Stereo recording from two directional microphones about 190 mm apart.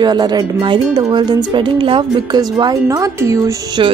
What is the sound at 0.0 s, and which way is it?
A woman's voice, 20° right (ahead or behind).